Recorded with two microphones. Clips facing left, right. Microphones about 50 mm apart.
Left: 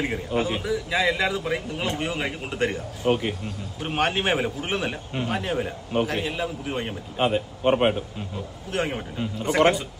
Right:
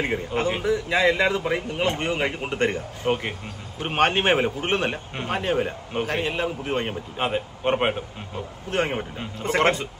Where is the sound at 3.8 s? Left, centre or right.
Right.